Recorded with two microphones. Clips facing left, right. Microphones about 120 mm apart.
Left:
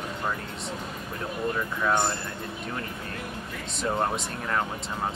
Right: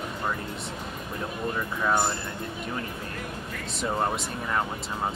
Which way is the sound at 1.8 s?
5° right (ahead or behind).